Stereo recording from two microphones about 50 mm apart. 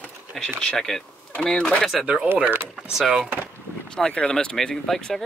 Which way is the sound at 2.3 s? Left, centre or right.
Right.